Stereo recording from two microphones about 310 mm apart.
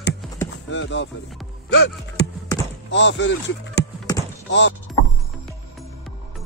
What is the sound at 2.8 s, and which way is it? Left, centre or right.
Speech, left.